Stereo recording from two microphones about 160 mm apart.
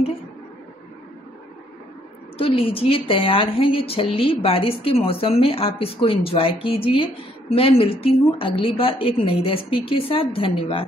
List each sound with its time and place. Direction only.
2.3 s a woman's voice: 35° left (ahead or behind)